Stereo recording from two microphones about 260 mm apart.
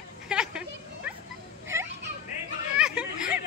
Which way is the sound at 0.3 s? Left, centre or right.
Centre.